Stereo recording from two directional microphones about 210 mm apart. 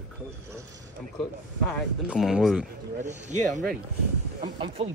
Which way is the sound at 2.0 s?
Centre (ahead or behind).